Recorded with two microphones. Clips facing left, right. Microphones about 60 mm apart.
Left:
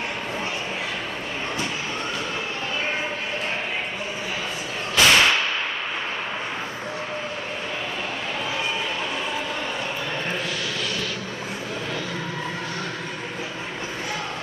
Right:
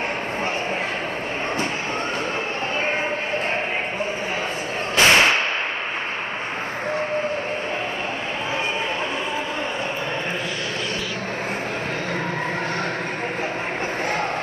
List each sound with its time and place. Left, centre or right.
4.9 s whip: right